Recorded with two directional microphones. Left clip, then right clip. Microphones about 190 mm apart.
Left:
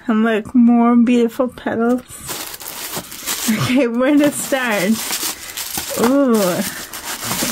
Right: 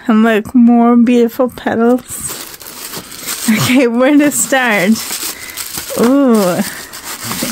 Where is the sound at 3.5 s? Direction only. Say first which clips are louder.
Right 6 dB; 50° right (ahead or behind).